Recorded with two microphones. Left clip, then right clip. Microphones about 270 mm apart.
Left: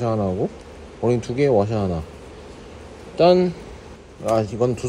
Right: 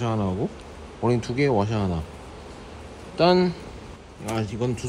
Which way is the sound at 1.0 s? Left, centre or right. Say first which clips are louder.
Left 3 dB; centre.